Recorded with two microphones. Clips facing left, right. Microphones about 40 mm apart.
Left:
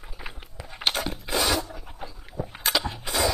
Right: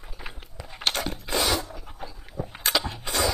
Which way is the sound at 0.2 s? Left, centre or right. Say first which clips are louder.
Left 1 dB; centre.